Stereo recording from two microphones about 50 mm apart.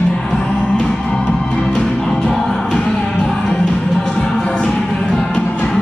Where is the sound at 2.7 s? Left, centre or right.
Centre.